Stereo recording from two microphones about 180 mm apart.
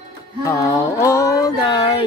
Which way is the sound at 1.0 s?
15° left (ahead or behind).